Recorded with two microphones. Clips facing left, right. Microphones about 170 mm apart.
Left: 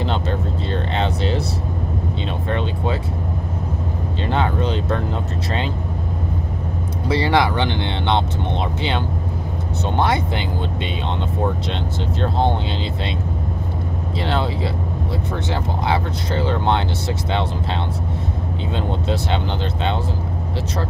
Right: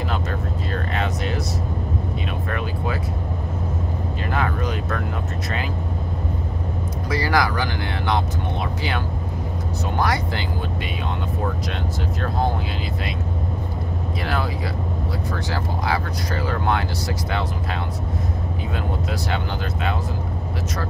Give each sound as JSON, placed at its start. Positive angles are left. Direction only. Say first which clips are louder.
{"t": 0.0, "sound": "vehicle", "louder": "left 4 dB", "side_deg": 25}
{"t": 2.5, "sound": "music", "louder": "left 5 dB", "side_deg": 25}
{"t": 4.3, "sound": "speech", "louder": "left 4 dB", "side_deg": 25}
{"t": 7.1, "sound": "speech", "louder": "left 4 dB", "side_deg": 25}
{"t": 9.9, "sound": "speech", "louder": "left 3 dB", "side_deg": 25}
{"t": 12.2, "sound": "speech", "louder": "left 4 dB", "side_deg": 25}
{"t": 14.2, "sound": "speech", "louder": "left 4 dB", "side_deg": 25}
{"t": 19.0, "sound": "speech", "louder": "left 4 dB", "side_deg": 25}